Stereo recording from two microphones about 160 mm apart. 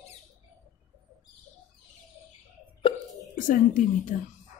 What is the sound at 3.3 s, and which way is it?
Speech, 55° left (ahead or behind).